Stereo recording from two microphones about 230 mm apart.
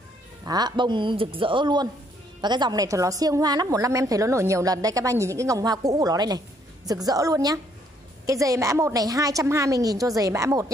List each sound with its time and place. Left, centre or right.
0.5 s a woman's voice: centre